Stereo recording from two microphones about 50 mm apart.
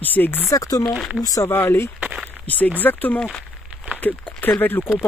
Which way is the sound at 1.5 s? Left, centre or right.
Left.